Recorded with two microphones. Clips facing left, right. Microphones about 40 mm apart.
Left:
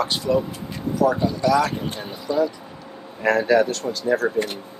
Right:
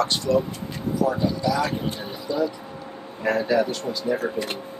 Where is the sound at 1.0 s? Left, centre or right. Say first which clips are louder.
Left 4 dB; left.